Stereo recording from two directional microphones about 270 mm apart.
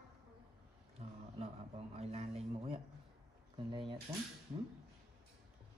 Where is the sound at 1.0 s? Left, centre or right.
Right.